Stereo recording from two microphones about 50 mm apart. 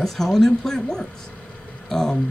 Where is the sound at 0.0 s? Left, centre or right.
Centre.